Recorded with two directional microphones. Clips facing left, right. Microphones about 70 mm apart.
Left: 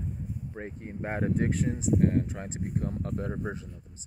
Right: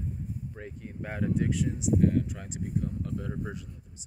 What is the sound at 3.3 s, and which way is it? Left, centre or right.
Speech, left.